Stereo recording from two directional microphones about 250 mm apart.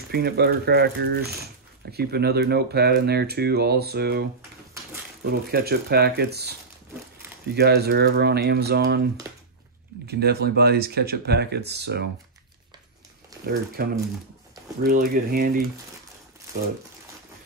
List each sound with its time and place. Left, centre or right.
0.1 s speech: right
10.0 s speech: right
13.3 s a sound: centre
13.8 s speech: right